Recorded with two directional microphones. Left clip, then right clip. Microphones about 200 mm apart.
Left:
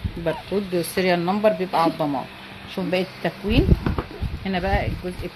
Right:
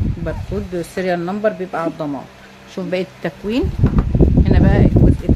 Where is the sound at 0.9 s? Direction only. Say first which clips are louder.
Right 1 dB; 25° right (ahead or behind).